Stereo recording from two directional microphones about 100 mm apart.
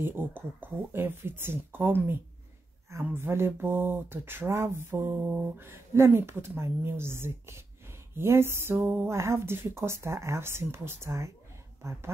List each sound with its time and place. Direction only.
0.0 s speech: 20° right (ahead or behind)